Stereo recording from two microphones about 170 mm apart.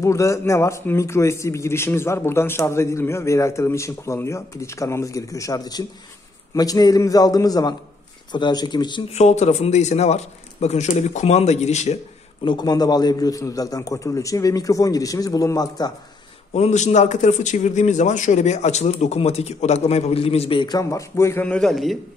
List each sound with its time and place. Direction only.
0.0 s a man's voice: 15° left (ahead or behind)
9.1 s a man's voice: 40° left (ahead or behind)
12.4 s a man's voice: 25° left (ahead or behind)
16.5 s a man's voice: 40° left (ahead or behind); by 21.9 s centre (ahead or behind)